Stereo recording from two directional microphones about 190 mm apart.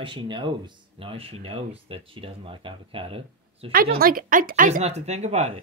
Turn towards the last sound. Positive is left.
turn(degrees=-35)  # may be behind; listen again after turning